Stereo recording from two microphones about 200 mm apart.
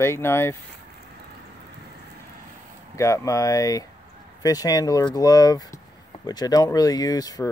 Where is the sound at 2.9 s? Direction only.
15° left (ahead or behind).